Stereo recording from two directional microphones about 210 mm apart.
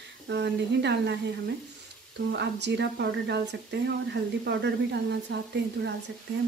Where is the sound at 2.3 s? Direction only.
55° right (ahead or behind).